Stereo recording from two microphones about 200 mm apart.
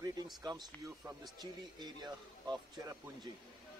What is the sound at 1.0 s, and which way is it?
A man's voice, 15° right (ahead or behind).